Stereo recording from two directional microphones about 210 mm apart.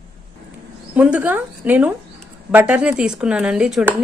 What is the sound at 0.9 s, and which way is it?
A woman's voice, 5° right (ahead or behind).